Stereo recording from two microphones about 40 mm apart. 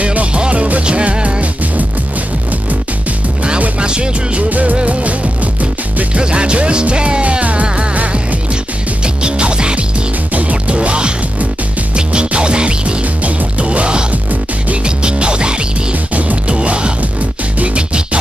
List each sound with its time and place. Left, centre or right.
0.0 s music: right
3.8 s music: right
4.5 s music: right
6.2 s music: right
9.0 s music: right
13.0 s music: right
14.1 s music: right
14.9 s music: right
15.9 s music: right
16.5 s music: right